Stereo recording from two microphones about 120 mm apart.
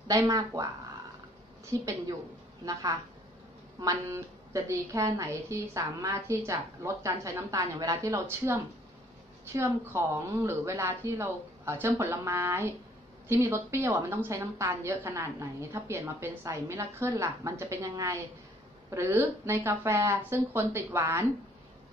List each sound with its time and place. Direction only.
0.1 s a woman's voice: 25° right (ahead or behind)
1.7 s a woman's voice: 25° right (ahead or behind)